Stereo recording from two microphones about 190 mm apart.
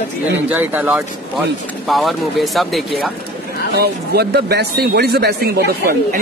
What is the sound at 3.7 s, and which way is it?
A man's voice, 60° right (ahead or behind).